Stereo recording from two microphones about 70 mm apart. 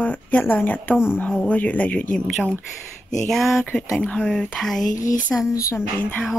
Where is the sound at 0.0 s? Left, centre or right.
Left.